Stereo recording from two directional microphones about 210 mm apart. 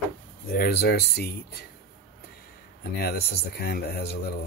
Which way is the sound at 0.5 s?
50° left (ahead or behind).